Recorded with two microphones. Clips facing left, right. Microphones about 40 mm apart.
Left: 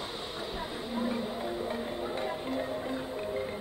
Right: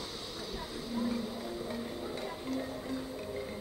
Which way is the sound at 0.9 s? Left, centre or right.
Left.